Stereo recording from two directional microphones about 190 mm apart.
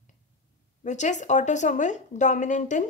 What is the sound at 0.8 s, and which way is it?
Speech, 40° left (ahead or behind).